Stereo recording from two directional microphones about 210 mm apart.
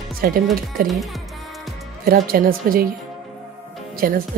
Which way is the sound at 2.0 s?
45° right (ahead or behind).